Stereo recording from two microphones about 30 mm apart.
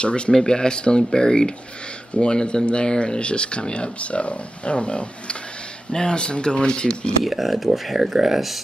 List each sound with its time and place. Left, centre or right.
0.3 s speech: left
7.2 s speech: centre